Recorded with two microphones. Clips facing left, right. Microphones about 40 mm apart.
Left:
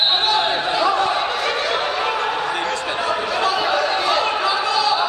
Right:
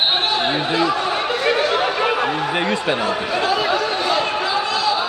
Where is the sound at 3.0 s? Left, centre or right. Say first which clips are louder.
Even; centre.